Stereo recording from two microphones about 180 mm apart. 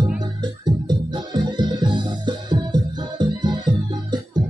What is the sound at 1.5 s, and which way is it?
Music, 25° right (ahead or behind).